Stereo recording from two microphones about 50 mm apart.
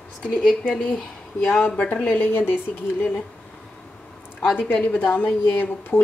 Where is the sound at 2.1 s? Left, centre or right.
Left.